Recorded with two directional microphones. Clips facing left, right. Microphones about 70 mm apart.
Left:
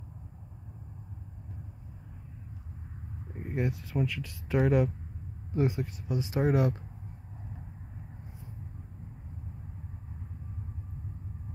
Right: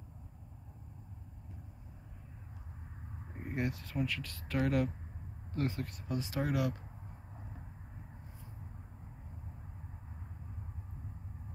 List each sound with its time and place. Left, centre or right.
3.3 s speech: centre
6.3 s speech: left